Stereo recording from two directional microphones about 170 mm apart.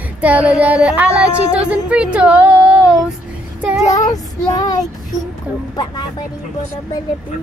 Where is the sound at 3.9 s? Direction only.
20° left (ahead or behind).